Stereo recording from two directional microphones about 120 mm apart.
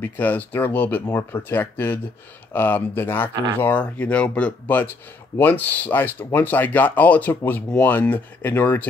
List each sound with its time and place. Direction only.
0.0 s speech: 15° left (ahead or behind)